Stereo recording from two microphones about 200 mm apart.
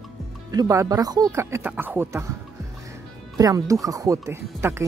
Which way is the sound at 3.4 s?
15° right (ahead or behind).